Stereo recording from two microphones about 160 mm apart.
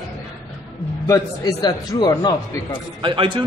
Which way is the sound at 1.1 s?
20° left (ahead or behind).